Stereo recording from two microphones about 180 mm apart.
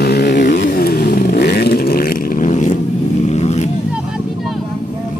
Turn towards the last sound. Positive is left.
turn(degrees=40)  # may be behind; listen again after turning